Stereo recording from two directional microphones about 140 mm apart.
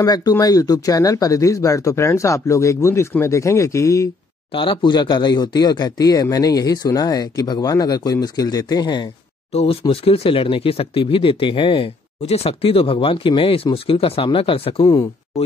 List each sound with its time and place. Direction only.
0.0 s speech: 25° left (ahead or behind)
4.5 s speech: 40° left (ahead or behind)
9.5 s speech: 45° left (ahead or behind)